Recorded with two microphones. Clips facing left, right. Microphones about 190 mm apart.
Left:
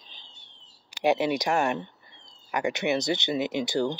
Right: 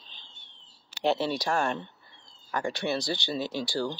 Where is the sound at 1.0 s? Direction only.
15° left (ahead or behind).